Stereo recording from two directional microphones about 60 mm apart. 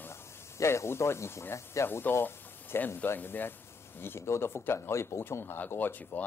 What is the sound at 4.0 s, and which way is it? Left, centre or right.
Speech, left.